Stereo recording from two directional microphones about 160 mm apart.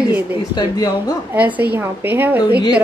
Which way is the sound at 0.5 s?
25° left (ahead or behind).